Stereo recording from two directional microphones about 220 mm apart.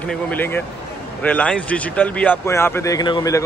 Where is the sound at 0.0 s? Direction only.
5° left (ahead or behind).